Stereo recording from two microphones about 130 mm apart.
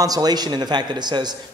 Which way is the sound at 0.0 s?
30° right (ahead or behind).